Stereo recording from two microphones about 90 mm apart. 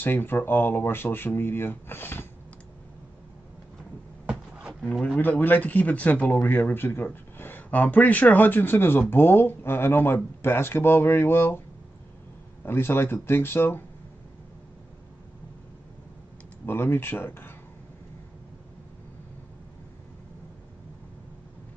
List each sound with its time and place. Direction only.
0.0 s speech: 20° left (ahead or behind)
4.3 s a sound: 10° right (ahead or behind)
4.8 s speech: 5° left (ahead or behind)
5.2 s speech: 20° left (ahead or behind)
12.6 s speech: 25° left (ahead or behind)
16.6 s speech: 25° left (ahead or behind)